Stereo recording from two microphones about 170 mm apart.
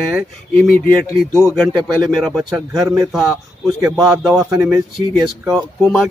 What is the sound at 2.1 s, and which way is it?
Speech, centre (ahead or behind).